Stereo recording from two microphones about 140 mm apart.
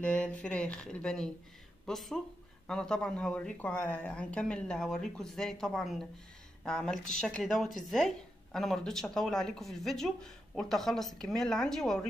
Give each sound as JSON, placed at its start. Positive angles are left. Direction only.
{"t": 0.0, "sound": "a woman's voice", "side_deg": 10}